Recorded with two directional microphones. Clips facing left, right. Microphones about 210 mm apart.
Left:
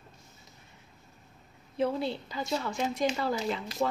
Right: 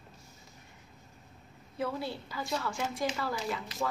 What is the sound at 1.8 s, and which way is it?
Speech, 20° left (ahead or behind).